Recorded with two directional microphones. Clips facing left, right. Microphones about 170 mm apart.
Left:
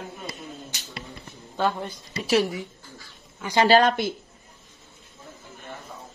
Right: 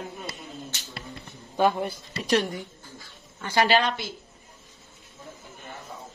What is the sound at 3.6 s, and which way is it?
Speech, 45° left (ahead or behind).